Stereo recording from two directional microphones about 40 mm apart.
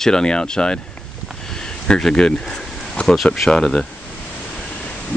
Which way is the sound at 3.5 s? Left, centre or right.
Centre.